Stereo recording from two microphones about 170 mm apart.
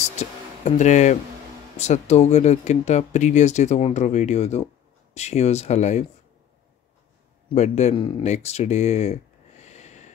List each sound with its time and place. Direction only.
0.0 s music: 40° left (ahead or behind)
1.8 s speech: 40° left (ahead or behind)
7.5 s speech: 40° left (ahead or behind)
8.2 s a sound: 40° left (ahead or behind)